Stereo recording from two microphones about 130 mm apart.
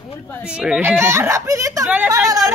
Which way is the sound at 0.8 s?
20° right (ahead or behind).